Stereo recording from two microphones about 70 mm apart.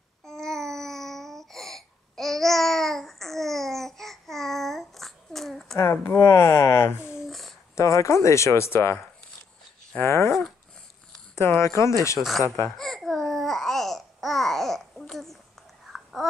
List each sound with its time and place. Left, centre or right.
0.2 s babbling: centre
5.8 s speech: left
7.2 s a sound: centre
7.7 s speech: left
10.0 s speech: left
11.3 s speech: left
12.2 s speech: centre
12.4 s speech: left
12.7 s babbling: centre